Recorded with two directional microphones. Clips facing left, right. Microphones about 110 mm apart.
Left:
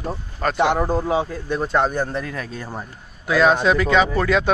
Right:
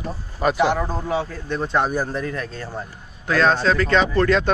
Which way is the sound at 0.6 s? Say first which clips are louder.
Left 3 dB; 15° left (ahead or behind).